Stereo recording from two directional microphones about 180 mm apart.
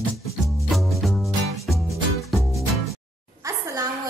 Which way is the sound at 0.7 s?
Centre (ahead or behind).